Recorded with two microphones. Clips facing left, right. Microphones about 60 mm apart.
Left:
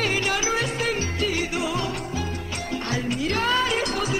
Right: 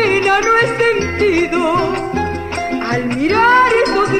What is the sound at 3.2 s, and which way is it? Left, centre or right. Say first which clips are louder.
Music: right 14 dB; right.